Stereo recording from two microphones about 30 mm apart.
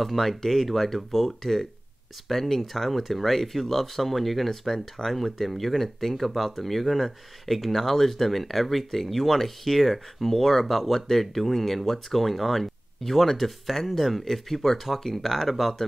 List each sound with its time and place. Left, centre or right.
0.0 s speech: centre
4.7 s speech: centre
5.1 s speech: centre